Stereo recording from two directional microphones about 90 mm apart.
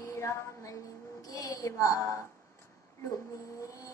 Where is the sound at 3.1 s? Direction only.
40° left (ahead or behind).